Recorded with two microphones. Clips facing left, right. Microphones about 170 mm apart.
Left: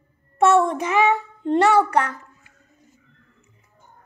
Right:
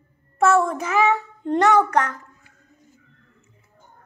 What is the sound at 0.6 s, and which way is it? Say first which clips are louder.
A child's voice: left 1 dB; 15° left (ahead or behind).